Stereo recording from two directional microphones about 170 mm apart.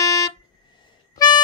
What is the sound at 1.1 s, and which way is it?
Harmonica, 25° left (ahead or behind).